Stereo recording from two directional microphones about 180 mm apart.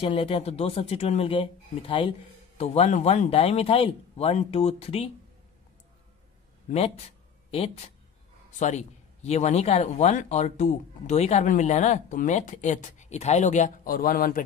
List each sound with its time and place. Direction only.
0.0 s speech: 30° left (ahead or behind)
7.5 s speech: 35° left (ahead or behind); by 14.4 s 50° left (ahead or behind)